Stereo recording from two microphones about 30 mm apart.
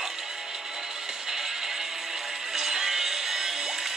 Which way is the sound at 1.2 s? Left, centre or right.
Centre.